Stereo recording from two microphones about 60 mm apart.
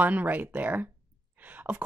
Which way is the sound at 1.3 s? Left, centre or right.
Right.